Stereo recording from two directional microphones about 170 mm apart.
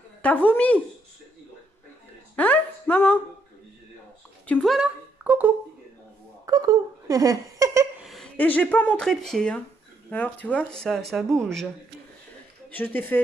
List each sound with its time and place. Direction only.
0.2 s speech: 10° left (ahead or behind)
2.3 s a sound: 10° left (ahead or behind)
4.5 s speech: 5° left (ahead or behind)
6.4 s speech: 20° right (ahead or behind)
8.0 s a sound: centre (ahead or behind)
8.4 s speech: 10° left (ahead or behind)
12.6 s a woman's voice: 10° left (ahead or behind)